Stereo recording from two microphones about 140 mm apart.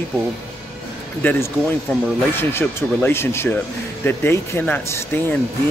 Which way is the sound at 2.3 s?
15° left (ahead or behind).